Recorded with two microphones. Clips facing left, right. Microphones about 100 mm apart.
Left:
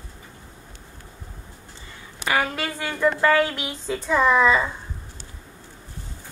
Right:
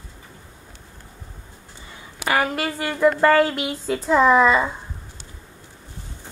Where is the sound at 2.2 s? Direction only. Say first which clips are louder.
Right 2 dB; 10° right (ahead or behind).